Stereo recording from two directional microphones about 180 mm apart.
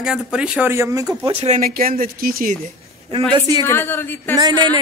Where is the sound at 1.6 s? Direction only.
55° right (ahead or behind).